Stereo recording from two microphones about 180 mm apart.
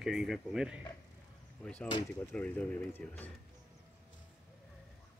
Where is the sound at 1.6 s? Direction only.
5° left (ahead or behind).